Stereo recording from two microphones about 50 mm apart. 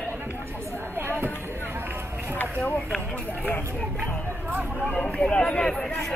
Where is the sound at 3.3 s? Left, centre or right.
Left.